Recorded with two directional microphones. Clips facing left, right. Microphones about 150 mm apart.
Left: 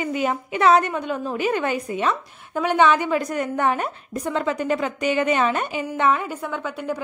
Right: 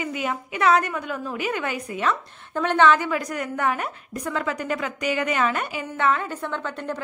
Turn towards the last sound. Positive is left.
turn(degrees=10)  # may be behind; listen again after turning